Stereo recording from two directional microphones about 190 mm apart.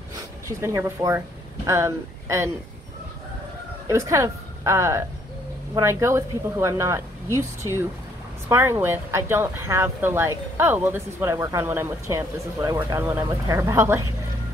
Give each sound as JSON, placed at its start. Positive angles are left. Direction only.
{"t": 0.1, "sound": "speech", "side_deg": -15}
{"t": 3.8, "sound": "a woman's voice", "side_deg": -15}
{"t": 8.5, "sound": "speech", "side_deg": -15}